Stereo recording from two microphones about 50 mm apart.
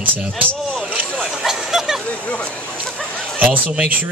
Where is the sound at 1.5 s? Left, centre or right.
Centre.